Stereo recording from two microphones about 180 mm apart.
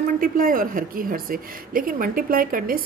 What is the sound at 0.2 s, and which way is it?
A woman's voice, 50° right (ahead or behind).